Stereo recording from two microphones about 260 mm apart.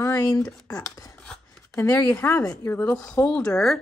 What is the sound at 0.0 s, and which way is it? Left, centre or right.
A woman's voice, centre.